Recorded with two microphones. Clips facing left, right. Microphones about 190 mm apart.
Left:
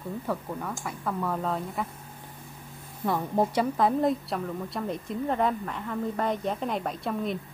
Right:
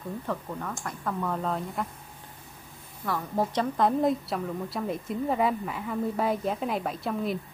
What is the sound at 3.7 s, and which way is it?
Speech, centre (ahead or behind).